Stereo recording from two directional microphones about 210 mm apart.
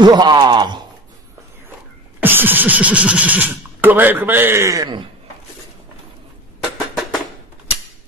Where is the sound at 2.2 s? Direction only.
10° right (ahead or behind).